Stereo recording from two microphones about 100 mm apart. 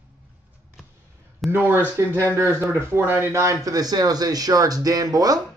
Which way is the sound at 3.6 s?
40° right (ahead or behind).